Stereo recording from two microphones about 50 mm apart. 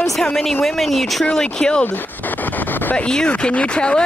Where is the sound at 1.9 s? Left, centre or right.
Left.